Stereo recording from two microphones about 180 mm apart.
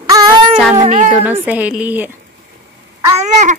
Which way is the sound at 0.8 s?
40° right (ahead or behind).